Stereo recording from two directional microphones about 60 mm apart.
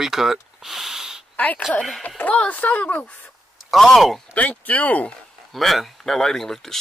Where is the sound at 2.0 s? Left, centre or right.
Left.